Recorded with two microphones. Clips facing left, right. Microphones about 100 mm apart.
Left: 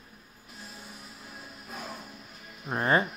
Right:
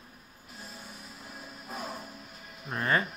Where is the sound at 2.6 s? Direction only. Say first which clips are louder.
Left 3 dB; 30° left (ahead or behind).